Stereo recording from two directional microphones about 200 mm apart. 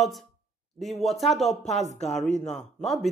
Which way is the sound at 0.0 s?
Centre (ahead or behind).